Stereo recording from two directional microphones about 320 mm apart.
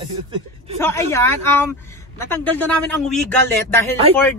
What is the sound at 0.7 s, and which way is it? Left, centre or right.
Speech, centre.